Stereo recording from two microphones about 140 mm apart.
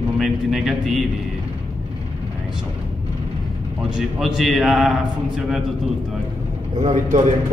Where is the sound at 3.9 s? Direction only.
Centre (ahead or behind).